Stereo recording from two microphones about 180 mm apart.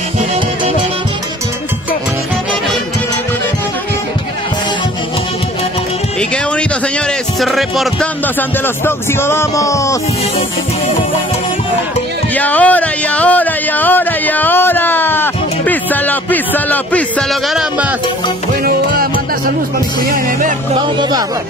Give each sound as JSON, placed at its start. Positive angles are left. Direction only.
{"t": 7.3, "sound": "music", "side_deg": 0}
{"t": 8.4, "sound": "speech", "side_deg": 10}
{"t": 12.4, "sound": "speech", "side_deg": 10}
{"t": 18.6, "sound": "music", "side_deg": -55}